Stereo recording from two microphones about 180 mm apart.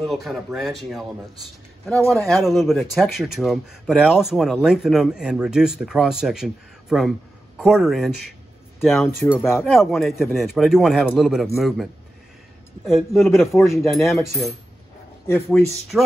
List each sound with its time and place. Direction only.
0.0 s speech: centre (ahead or behind)
2.0 s speech: centre (ahead or behind)
9.3 s speech: 15° left (ahead or behind)
9.6 s speech: centre (ahead or behind)
13.4 s speech: 15° left (ahead or behind)
15.2 s speech: 15° left (ahead or behind)
15.9 s speech: 5° right (ahead or behind)